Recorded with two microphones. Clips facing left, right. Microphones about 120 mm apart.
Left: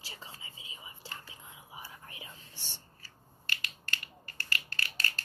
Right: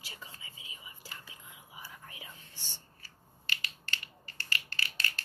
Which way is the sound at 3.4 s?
45° left (ahead or behind).